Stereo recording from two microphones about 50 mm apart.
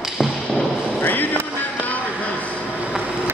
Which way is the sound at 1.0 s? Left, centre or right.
Left.